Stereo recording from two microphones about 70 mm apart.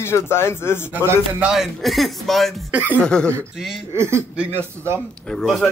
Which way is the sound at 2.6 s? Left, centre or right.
Right.